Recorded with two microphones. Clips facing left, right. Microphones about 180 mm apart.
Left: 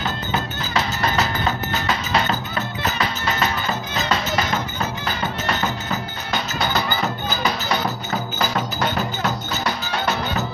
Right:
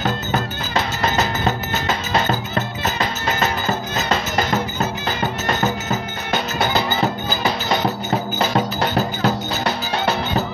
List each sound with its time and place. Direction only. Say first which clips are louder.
8.4 s music: right 3 dB; 30° right (ahead or behind)